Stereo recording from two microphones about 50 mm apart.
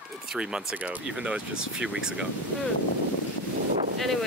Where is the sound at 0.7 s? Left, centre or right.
Right.